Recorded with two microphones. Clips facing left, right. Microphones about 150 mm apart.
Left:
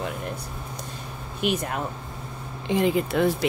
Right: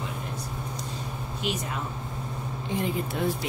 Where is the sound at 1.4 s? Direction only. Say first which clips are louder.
Left 6 dB; 55° left (ahead or behind).